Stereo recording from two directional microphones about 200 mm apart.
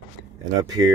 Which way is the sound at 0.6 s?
20° right (ahead or behind).